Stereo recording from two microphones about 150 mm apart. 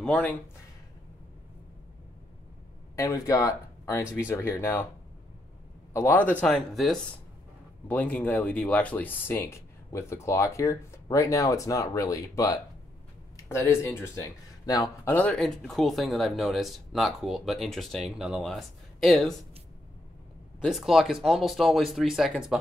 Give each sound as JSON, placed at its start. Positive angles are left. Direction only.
{"t": 0.0, "sound": "speech", "side_deg": 10}
{"t": 3.0, "sound": "speech", "side_deg": 20}
{"t": 5.9, "sound": "speech", "side_deg": 15}
{"t": 6.4, "sound": "speech", "side_deg": 0}
{"t": 20.6, "sound": "speech", "side_deg": 0}